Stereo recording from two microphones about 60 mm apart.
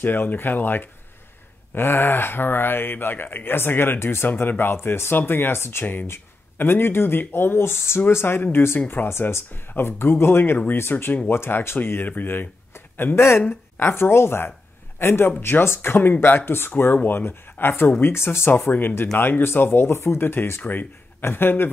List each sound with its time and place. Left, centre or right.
0.0 s speech: left